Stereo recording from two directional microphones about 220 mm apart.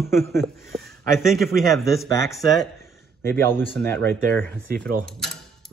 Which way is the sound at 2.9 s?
10° left (ahead or behind).